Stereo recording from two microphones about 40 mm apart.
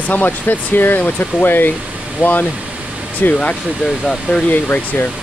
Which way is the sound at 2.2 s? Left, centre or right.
Right.